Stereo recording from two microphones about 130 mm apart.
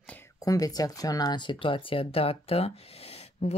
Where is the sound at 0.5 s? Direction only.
30° left (ahead or behind).